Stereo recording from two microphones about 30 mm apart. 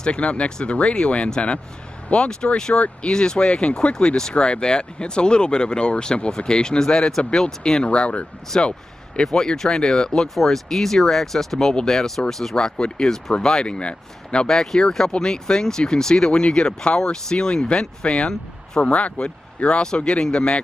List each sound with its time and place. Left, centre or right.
0.2 s speech: left
2.2 s speech: left
7.8 s speech: left
9.2 s speech: left
10.3 s speech: centre
12.5 s speech: left
14.5 s speech: centre
16.3 s speech: left
18.0 s speech: left